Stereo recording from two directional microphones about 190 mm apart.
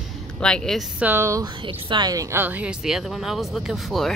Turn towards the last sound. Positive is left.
turn(degrees=0)  # may be behind; listen again after turning